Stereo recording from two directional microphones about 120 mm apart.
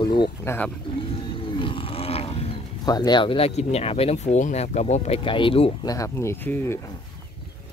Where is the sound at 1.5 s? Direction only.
45° left (ahead or behind).